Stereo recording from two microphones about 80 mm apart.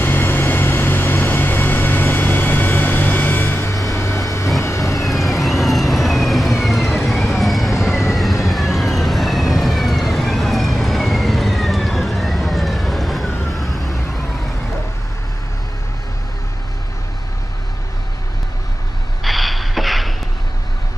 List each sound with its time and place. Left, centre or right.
0.0 s music: left
3.9 s a sound: left
4.6 s vehicle: left
5.0 s vehicle: centre
8.5 s police car: centre
13.6 s emergency vehicle: centre
19.2 s a sound: centre